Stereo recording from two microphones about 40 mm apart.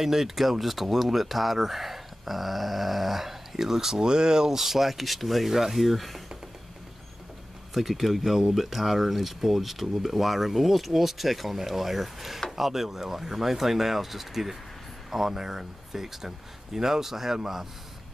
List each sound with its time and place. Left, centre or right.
0.0 s speech: centre
7.7 s speech: centre